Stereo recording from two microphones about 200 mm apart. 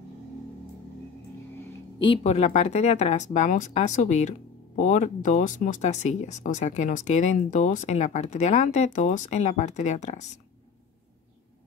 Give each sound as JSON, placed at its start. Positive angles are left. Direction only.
{"t": 2.2, "sound": "speech", "side_deg": 35}